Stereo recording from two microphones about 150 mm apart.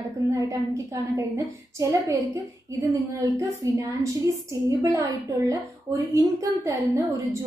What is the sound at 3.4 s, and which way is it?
A woman's voice, 20° right (ahead or behind).